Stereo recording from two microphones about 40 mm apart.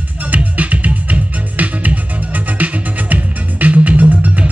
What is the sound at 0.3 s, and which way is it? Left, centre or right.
Music, right.